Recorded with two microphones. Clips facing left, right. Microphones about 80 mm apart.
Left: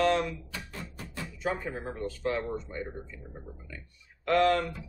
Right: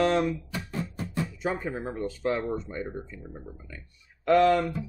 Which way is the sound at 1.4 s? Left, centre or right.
Centre.